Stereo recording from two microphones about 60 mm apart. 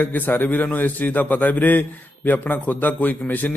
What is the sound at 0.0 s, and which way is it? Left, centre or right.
A man's voice, left.